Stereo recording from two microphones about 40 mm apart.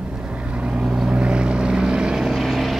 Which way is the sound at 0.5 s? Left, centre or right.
Right.